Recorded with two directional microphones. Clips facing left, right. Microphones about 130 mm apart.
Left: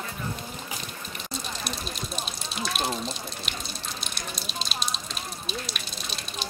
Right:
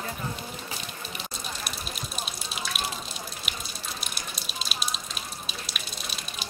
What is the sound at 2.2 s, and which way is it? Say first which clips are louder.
Drip: left 2 dB; centre (ahead or behind).